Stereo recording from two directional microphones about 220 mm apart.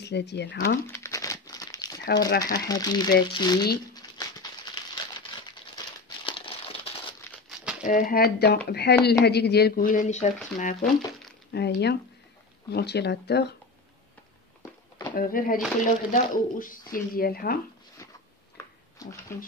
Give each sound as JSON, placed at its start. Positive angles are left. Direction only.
{"t": 0.0, "sound": "speech", "side_deg": 50}
{"t": 0.8, "sound": "crumpling", "side_deg": 10}
{"t": 2.4, "sound": "speech", "side_deg": 15}
{"t": 3.9, "sound": "crumpling", "side_deg": 15}
{"t": 6.2, "sound": "crumpling", "side_deg": 25}
{"t": 7.2, "sound": "crumpling", "side_deg": 0}
{"t": 7.8, "sound": "speech", "side_deg": 40}
{"t": 11.5, "sound": "speech", "side_deg": 50}
{"t": 14.6, "sound": "a sound", "side_deg": 15}
{"t": 15.1, "sound": "speech", "side_deg": 40}
{"t": 19.0, "sound": "speech", "side_deg": 15}